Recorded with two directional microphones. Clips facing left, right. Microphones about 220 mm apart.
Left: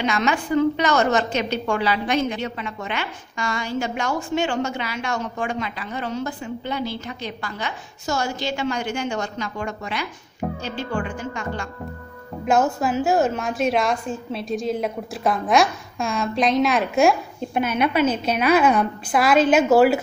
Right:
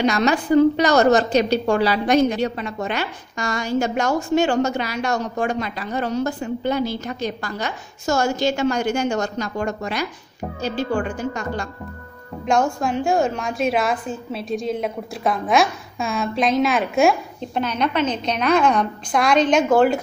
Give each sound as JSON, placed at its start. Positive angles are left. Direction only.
{"t": 0.0, "sound": "a woman's voice", "side_deg": -40}
{"t": 12.4, "sound": "a woman's voice", "side_deg": 5}